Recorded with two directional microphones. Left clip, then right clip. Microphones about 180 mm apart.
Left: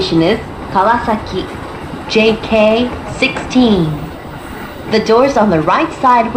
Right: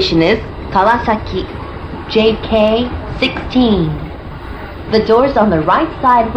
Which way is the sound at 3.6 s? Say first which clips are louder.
Left 1 dB; 25° left (ahead or behind).